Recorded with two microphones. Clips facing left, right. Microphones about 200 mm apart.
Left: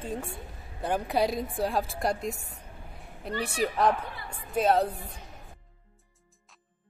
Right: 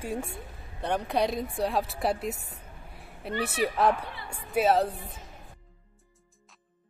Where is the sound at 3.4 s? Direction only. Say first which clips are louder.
Right 1 dB; 5° right (ahead or behind).